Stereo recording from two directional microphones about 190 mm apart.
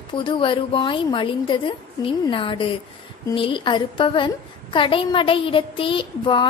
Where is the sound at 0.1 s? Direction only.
25° left (ahead or behind).